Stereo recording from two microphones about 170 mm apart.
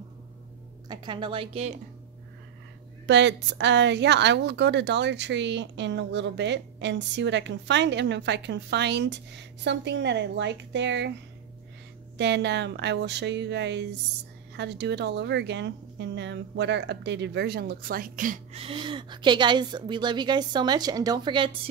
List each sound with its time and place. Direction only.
0.8 s a woman's voice: 30° right (ahead or behind)
3.1 s speech: 90° right
12.2 s speech: 90° right; by 18.4 s 55° right (ahead or behind)
18.5 s a woman's voice: 35° right (ahead or behind)